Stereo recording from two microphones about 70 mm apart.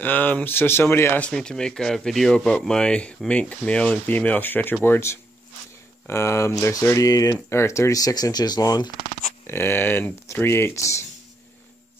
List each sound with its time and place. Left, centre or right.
0.0 s speech: left
1.2 s speech: centre; by 7.3 s left
7.4 s speech: left
8.0 s speech: left
9.5 s speech: left